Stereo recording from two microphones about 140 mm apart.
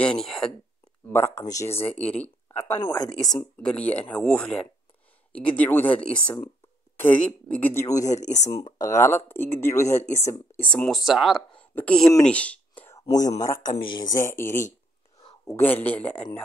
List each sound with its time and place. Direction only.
0.0 s speech: 5° left (ahead or behind)
1.1 s speech: 15° left (ahead or behind)
2.8 s speech: 30° left (ahead or behind)
3.1 s speech: centre (ahead or behind); by 8.1 s 20° left (ahead or behind)
8.1 s speech: 60° left (ahead or behind)
8.6 s speech: 25° left (ahead or behind)
10.7 s speech: 5° left (ahead or behind)
13.4 s speech: 25° left (ahead or behind)